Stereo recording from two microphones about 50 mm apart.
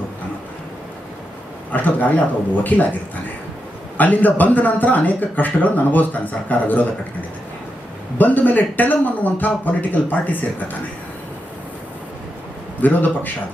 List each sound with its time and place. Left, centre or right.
1.7 s speech: left
4.0 s speech: left
8.2 s speech: left
12.8 s speech: left